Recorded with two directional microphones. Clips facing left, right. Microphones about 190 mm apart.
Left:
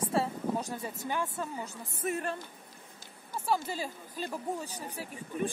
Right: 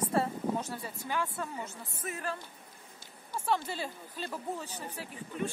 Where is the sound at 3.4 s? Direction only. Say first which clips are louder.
Left 1 dB; 10° left (ahead or behind).